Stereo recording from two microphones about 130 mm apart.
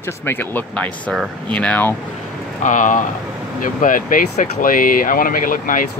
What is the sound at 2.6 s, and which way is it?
Speech, 80° left.